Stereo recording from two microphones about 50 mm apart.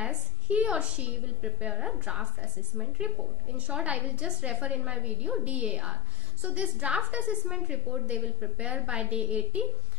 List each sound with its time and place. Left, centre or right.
0.0 s a woman's voice: right